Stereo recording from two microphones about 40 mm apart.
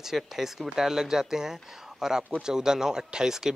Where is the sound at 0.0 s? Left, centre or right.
Centre.